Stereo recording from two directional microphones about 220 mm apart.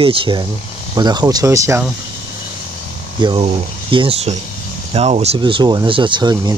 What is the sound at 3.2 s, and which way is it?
Speech, 20° right (ahead or behind).